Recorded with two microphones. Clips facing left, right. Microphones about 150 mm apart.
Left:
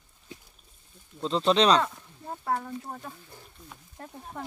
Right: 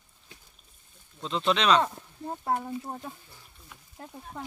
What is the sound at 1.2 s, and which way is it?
Speech, 35° left (ahead or behind).